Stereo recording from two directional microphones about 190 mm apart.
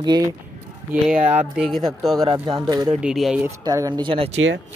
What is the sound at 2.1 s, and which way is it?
Speech, 25° right (ahead or behind).